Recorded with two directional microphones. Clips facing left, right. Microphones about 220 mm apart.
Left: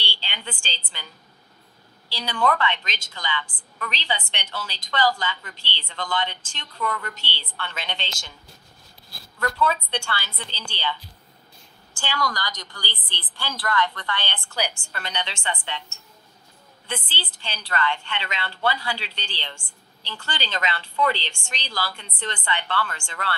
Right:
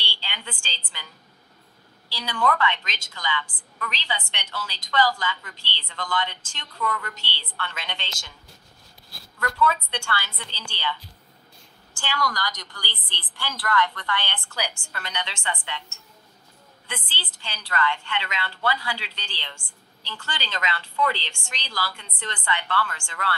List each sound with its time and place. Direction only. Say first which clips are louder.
0.0 s a sound: left 2 dB; 25° left (ahead or behind)
2.0 s a woman's voice: left 2 dB; 25° left (ahead or behind)
9.4 s a woman's voice: even; 30° left (ahead or behind)
12.0 s a woman's voice: even; 25° left (ahead or behind)
16.8 s a woman's voice: left 5 dB; 30° left (ahead or behind)